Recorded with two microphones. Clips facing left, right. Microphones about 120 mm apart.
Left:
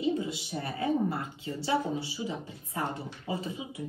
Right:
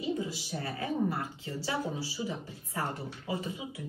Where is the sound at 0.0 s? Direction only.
25° left (ahead or behind).